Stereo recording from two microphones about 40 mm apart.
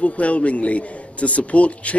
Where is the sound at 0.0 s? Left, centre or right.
Left.